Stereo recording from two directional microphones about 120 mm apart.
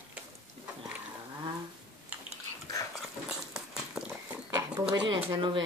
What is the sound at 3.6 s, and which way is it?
Horse, 5° right (ahead or behind).